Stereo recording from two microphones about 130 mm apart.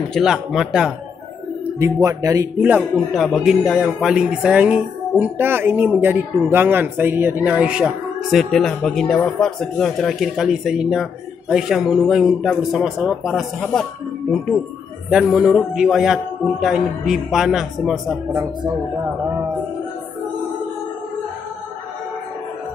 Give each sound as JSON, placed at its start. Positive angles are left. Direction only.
{"t": 0.1, "sound": "speech", "side_deg": 0}
{"t": 1.8, "sound": "speech", "side_deg": -25}
{"t": 3.3, "sound": "speech", "side_deg": 0}
{"t": 15.0, "sound": "speech", "side_deg": -5}
{"t": 18.3, "sound": "speech", "side_deg": -25}